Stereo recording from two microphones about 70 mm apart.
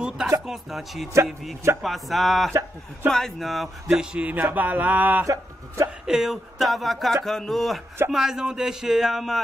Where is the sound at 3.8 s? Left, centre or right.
Centre.